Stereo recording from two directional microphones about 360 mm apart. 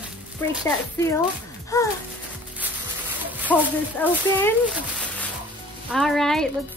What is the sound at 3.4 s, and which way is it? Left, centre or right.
Speech, centre.